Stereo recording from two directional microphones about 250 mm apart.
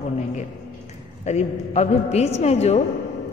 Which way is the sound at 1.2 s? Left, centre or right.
Left.